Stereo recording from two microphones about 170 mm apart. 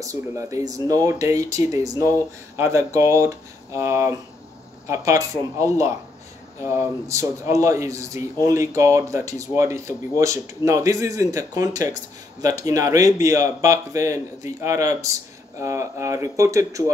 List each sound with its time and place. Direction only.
0.0 s speech: 20° right (ahead or behind)